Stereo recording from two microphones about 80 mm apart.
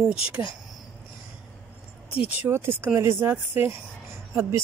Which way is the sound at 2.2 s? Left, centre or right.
Right.